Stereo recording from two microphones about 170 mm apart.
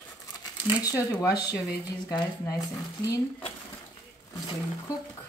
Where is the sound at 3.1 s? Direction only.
25° left (ahead or behind).